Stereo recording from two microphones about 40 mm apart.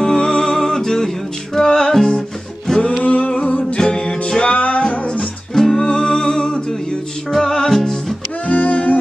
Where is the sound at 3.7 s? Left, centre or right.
Centre.